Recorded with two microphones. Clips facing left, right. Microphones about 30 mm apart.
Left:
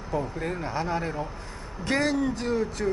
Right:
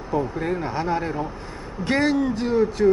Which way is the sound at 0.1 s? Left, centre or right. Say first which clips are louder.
Right 5 dB; centre.